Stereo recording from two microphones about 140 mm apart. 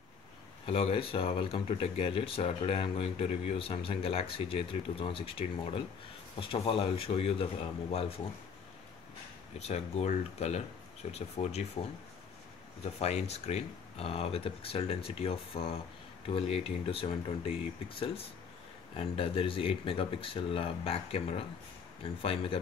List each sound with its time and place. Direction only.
0.7 s speech: 45° left (ahead or behind)
9.6 s speech: 50° left (ahead or behind)
12.8 s speech: 50° left (ahead or behind)